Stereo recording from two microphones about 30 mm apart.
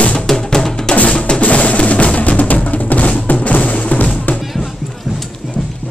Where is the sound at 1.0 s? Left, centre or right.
Left.